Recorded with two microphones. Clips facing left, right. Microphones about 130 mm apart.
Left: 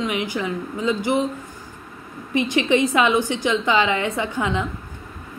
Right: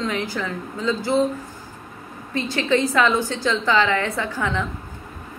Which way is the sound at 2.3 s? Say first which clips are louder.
Left 2 dB; 20° left (ahead or behind).